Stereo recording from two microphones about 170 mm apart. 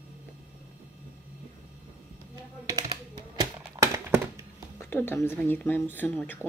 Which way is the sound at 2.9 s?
20° right (ahead or behind).